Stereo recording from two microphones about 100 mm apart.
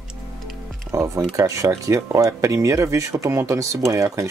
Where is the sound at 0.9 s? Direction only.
30° right (ahead or behind).